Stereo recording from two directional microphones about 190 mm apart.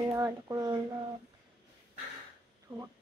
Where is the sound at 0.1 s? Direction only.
15° right (ahead or behind).